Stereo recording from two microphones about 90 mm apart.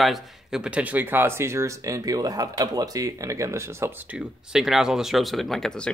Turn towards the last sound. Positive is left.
turn(degrees=5)  # may be behind; listen again after turning